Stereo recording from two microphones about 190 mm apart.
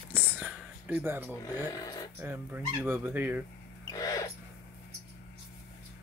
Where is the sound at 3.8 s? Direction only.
20° left (ahead or behind).